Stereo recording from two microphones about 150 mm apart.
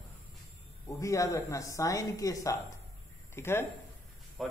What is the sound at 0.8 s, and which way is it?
Speech, 20° left (ahead or behind).